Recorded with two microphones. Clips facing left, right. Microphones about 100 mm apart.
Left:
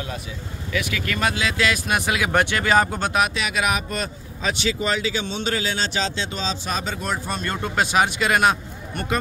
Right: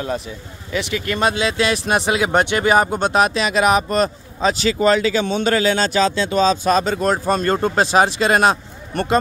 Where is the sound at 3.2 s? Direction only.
35° right (ahead or behind).